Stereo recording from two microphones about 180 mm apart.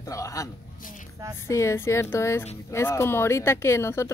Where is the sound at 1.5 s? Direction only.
15° left (ahead or behind).